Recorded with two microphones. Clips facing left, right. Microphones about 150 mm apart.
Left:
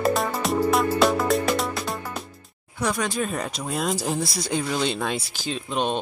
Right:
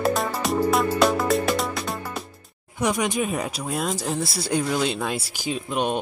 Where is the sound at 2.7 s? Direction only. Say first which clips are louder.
Right 2 dB; 15° right (ahead or behind).